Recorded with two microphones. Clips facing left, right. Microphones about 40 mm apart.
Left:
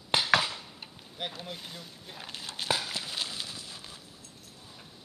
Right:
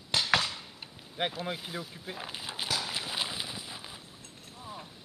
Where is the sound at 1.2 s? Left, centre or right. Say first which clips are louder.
Right 5 dB; right.